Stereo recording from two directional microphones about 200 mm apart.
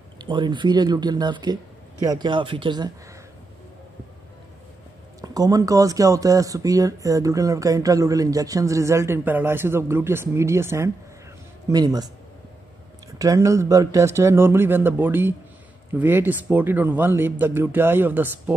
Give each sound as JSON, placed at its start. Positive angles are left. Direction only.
{"t": 0.2, "sound": "speech", "side_deg": -20}
{"t": 5.2, "sound": "speech", "side_deg": -20}
{"t": 13.2, "sound": "speech", "side_deg": -15}